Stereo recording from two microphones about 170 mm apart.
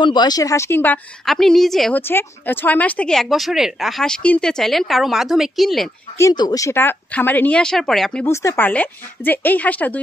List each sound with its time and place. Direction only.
0.0 s speech: 25° left (ahead or behind)
1.2 s speech: centre (ahead or behind)
2.0 s speech: 10° left (ahead or behind)
6.1 s speech: 20° left (ahead or behind); by 8.3 s 5° left (ahead or behind)
8.3 s speech: 15° left (ahead or behind)